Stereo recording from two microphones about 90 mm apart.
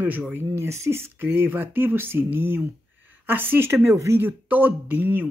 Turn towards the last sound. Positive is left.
turn(degrees=-20)  # may be behind; listen again after turning